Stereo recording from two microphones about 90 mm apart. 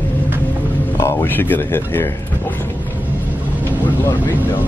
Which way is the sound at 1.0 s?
30° left (ahead or behind).